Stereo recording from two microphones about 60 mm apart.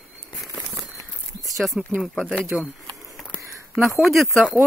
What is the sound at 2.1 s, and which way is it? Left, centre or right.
Speech, centre.